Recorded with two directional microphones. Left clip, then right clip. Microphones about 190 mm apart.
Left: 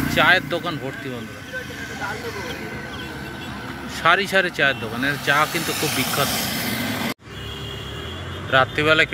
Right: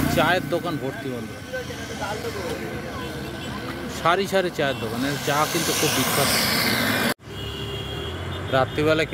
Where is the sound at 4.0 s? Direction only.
10° right (ahead or behind).